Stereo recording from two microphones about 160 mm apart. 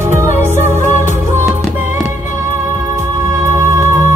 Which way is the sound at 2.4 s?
15° right (ahead or behind).